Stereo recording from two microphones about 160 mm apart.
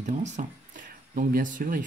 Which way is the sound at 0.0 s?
50° right (ahead or behind).